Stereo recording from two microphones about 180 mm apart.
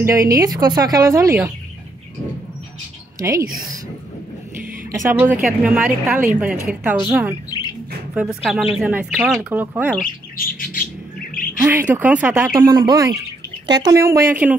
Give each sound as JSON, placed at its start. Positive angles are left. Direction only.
{"t": 0.0, "sound": "a woman's voice", "side_deg": -15}
{"t": 3.2, "sound": "a woman's voice", "side_deg": -20}
{"t": 4.9, "sound": "speech", "side_deg": -10}
{"t": 10.0, "sound": "bird", "side_deg": 50}
{"t": 11.6, "sound": "speech", "side_deg": -10}
{"t": 12.5, "sound": "a woman's voice", "side_deg": -25}